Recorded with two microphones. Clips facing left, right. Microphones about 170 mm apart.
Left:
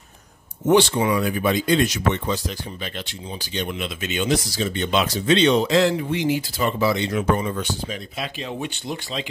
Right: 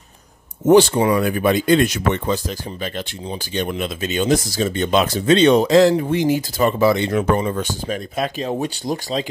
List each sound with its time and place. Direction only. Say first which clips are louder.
0.7 s speech: right 5 dB; 45° right (ahead or behind)